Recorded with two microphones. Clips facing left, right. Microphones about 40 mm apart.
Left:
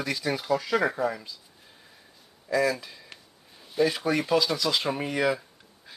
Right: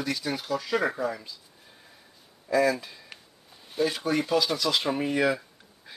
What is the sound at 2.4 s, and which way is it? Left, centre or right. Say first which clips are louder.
Speech: right 2 dB; centre.